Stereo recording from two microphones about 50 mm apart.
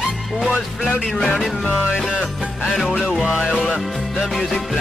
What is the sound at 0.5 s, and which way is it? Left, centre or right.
Speech, right.